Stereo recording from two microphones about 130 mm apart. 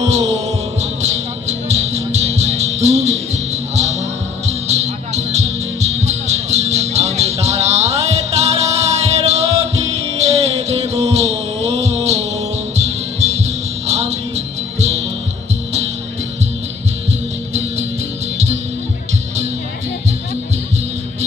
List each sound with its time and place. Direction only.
0.1 s music: 55° right (ahead or behind)